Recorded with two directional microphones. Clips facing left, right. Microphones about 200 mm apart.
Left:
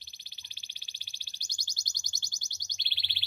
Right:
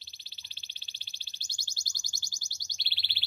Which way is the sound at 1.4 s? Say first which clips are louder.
Even; 15° left (ahead or behind).